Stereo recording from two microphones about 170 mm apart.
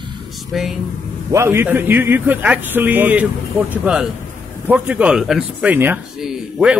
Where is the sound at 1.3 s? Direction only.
15° right (ahead or behind).